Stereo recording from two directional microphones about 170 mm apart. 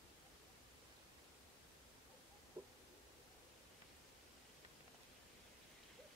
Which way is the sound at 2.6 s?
20° right (ahead or behind).